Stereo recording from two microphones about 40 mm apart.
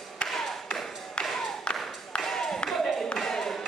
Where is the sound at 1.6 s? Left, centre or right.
Left.